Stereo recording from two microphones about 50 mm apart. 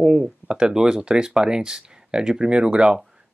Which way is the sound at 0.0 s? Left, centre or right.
Centre.